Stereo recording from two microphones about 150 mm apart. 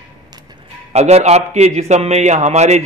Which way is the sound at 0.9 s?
45° right (ahead or behind).